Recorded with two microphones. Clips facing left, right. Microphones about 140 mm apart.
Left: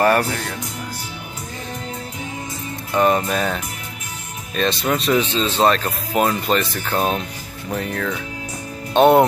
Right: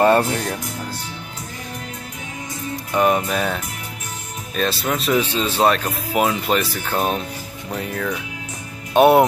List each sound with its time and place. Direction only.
0.0 s music: 20° right (ahead or behind)
2.9 s speech: 5° right (ahead or behind)